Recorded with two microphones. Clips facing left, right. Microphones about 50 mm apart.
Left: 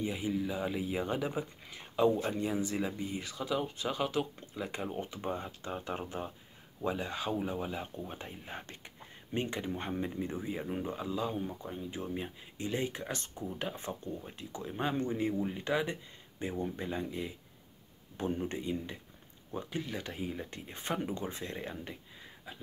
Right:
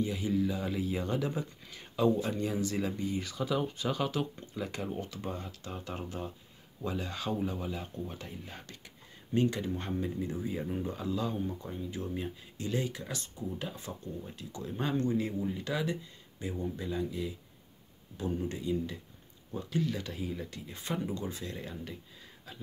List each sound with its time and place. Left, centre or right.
0.0 s speech: centre; by 14.1 s left
14.2 s speech: left